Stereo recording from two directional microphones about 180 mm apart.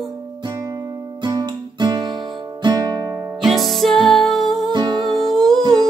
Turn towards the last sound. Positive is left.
turn(degrees=0)  # may be behind; listen again after turning